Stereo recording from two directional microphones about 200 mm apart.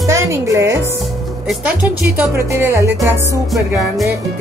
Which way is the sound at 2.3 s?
10° right (ahead or behind).